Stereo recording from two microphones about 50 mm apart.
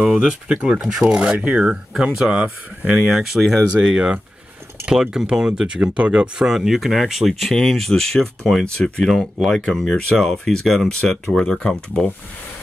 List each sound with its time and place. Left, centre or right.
0.0 s speech: centre
0.5 s speech: centre
1.4 s speech: right
2.1 s speech: centre
3.8 s speech: centre